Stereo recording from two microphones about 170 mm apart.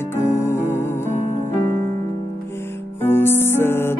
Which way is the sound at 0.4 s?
15° left (ahead or behind).